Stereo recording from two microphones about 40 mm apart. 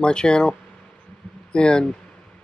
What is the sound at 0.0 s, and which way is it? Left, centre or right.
Speech, left.